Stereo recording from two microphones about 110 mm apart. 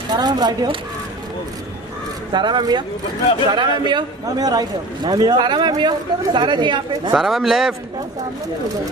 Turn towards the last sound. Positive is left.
turn(degrees=-5)  # may be behind; listen again after turning